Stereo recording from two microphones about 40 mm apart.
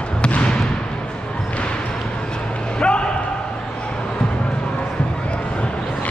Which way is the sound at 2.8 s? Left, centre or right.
Left.